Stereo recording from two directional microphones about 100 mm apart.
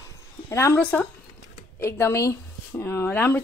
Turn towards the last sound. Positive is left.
turn(degrees=25)  # may be behind; listen again after turning